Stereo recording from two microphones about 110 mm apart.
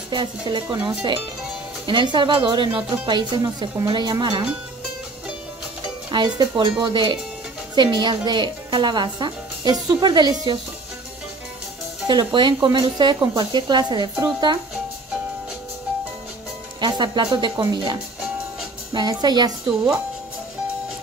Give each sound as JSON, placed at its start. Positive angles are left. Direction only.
{"t": 0.1, "sound": "a woman's voice", "side_deg": -45}
{"t": 1.9, "sound": "a woman's voice", "side_deg": -45}
{"t": 6.0, "sound": "a woman's voice", "side_deg": -40}
{"t": 12.1, "sound": "a woman's voice", "side_deg": -45}
{"t": 16.8, "sound": "a woman's voice", "side_deg": -40}
{"t": 18.9, "sound": "a woman's voice", "side_deg": -40}